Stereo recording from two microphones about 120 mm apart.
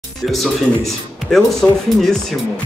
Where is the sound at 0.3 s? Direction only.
Centre (ahead or behind).